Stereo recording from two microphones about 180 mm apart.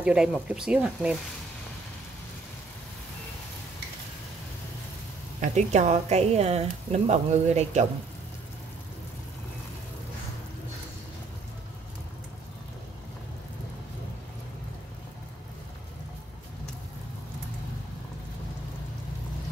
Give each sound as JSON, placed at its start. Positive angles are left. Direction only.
{"t": 0.0, "sound": "speech", "side_deg": -5}
{"t": 5.4, "sound": "a woman's voice", "side_deg": -40}